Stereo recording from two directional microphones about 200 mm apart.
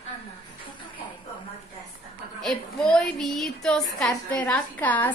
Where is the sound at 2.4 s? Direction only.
5° left (ahead or behind).